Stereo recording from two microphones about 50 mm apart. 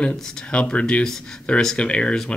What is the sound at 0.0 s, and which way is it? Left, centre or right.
Speech, left.